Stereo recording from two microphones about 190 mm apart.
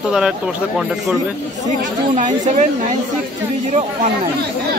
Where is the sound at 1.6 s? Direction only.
40° right (ahead or behind).